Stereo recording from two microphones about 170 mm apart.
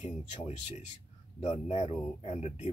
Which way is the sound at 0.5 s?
35° left (ahead or behind).